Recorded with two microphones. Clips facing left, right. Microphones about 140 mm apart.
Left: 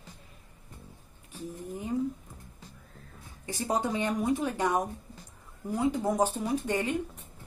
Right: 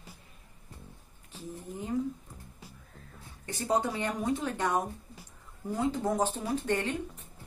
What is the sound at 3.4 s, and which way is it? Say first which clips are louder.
A woman's voice: even; 15° left (ahead or behind).